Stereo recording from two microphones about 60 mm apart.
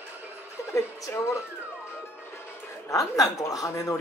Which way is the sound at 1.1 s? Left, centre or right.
Left.